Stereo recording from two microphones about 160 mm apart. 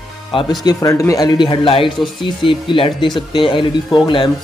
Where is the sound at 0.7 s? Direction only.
20° left (ahead or behind).